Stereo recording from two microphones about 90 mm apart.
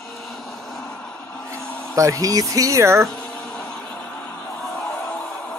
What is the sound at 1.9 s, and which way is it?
Speech, 40° right (ahead or behind).